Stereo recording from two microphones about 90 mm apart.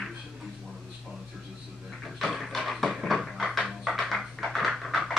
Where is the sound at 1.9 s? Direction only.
Centre (ahead or behind).